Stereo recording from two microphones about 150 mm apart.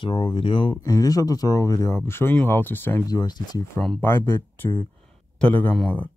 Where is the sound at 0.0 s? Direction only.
30° left (ahead or behind); by 3.0 s 15° left (ahead or behind).